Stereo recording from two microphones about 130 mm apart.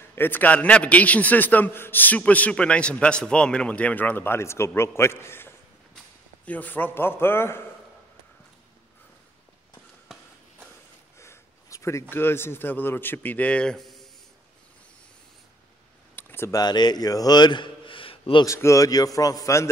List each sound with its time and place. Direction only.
0.1 s a man's voice: 15° left (ahead or behind)
11.1 s speech: 20° left (ahead or behind); by 14.0 s centre (ahead or behind)
16.2 s a sound: 15° left (ahead or behind)
16.5 s a man's voice: 35° left (ahead or behind)
18.4 s speech: 25° left (ahead or behind)